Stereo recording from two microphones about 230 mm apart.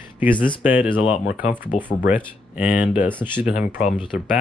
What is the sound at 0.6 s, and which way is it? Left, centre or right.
Speech, centre.